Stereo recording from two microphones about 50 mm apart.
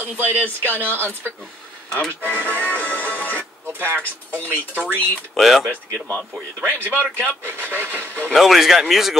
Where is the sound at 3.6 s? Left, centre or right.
Right.